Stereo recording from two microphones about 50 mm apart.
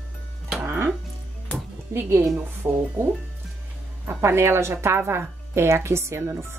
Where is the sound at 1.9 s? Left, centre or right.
Right.